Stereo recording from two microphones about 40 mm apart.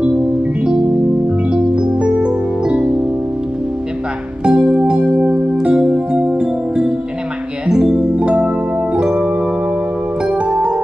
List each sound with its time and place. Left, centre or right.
1.5 s music: right
4.5 s music: right